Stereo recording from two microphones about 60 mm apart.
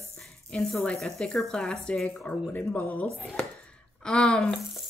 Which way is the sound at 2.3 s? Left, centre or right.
Left.